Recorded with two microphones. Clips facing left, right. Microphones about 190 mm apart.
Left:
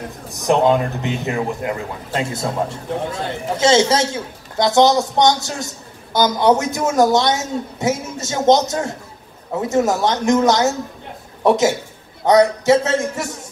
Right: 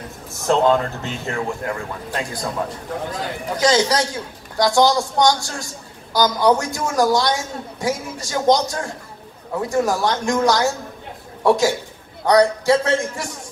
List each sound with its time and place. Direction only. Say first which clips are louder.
0.3 s a man's voice: left 1 dB; 15° left (ahead or behind)